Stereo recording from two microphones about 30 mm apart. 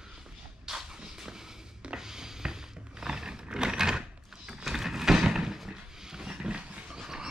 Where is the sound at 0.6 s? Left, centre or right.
Centre.